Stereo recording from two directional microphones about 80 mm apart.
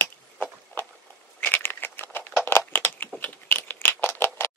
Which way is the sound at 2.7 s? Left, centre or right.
Left.